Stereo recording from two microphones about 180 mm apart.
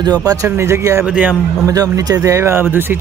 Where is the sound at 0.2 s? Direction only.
20° right (ahead or behind).